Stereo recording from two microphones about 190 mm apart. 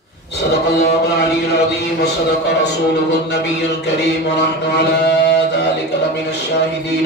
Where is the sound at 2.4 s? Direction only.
65° left (ahead or behind).